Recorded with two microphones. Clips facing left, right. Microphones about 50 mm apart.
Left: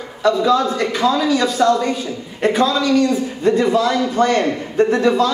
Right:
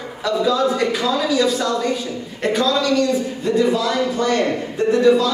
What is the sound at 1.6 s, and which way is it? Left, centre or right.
A woman's voice, left.